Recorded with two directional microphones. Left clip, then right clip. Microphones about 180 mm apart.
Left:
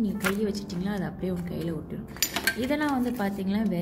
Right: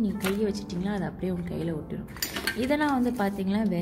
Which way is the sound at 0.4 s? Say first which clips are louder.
Right 1 dB; 15° right (ahead or behind).